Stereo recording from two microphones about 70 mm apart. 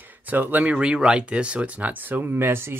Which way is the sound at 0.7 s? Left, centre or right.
Centre.